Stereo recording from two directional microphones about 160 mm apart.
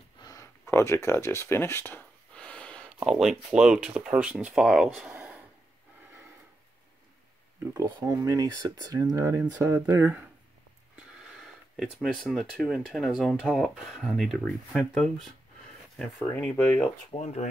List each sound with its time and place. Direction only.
0.2 s a sound: 20° left (ahead or behind)
3.1 s speech: 5° right (ahead or behind)
8.0 s speech: 20° right (ahead or behind)
11.0 s speech: centre (ahead or behind)
17.2 s speech: 40° left (ahead or behind)